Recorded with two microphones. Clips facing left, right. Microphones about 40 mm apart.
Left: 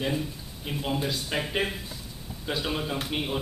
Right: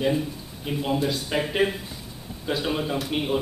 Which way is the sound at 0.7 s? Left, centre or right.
Centre.